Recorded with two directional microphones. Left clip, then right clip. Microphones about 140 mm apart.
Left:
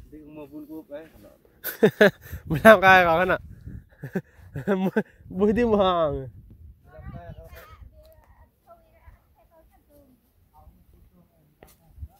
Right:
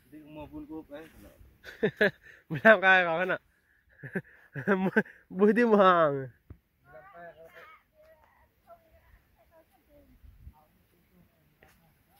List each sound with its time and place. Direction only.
1.6 s speech: 65° left (ahead or behind); by 3.4 s 50° left (ahead or behind)
3.9 s a sound: 35° left (ahead or behind)
4.6 s a sound: 20° left (ahead or behind)
5.0 s speech: 5° left (ahead or behind)
5.5 s speech: 10° right (ahead or behind)
5.9 s speech: 10° left (ahead or behind)